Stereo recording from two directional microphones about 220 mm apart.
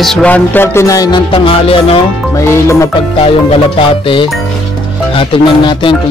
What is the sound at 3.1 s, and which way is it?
Speech, 25° left (ahead or behind).